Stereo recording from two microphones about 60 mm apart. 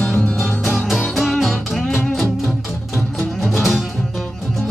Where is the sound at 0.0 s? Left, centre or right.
Centre.